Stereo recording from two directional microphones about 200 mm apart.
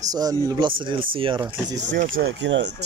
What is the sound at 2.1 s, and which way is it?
Speech, 55° right (ahead or behind).